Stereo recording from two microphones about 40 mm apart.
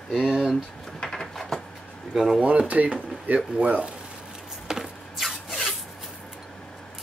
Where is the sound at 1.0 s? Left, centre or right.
Centre.